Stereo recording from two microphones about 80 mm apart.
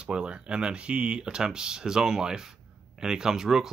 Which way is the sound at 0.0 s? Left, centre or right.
Centre.